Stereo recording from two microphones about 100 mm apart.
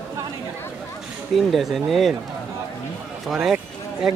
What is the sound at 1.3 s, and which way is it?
Speech, centre (ahead or behind).